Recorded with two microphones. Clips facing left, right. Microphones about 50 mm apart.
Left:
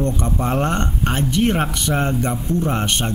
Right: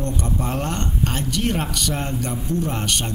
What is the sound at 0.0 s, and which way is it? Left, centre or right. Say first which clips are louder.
A man's voice: left 4 dB; left.